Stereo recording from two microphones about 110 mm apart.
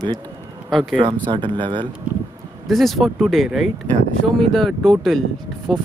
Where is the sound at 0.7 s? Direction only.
Centre (ahead or behind).